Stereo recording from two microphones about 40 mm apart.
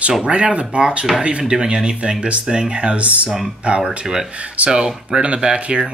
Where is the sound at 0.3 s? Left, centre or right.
Right.